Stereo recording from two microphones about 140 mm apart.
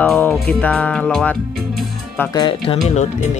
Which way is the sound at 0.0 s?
5° left (ahead or behind).